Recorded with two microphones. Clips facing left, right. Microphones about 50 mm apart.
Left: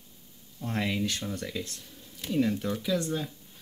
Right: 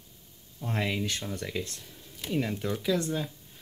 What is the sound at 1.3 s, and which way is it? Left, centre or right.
Speech, right.